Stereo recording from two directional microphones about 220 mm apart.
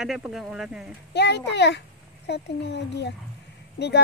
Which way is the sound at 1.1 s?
50° left (ahead or behind).